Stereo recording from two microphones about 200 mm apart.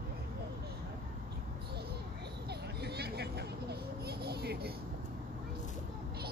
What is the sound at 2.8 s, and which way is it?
Vehicle, 55° right (ahead or behind).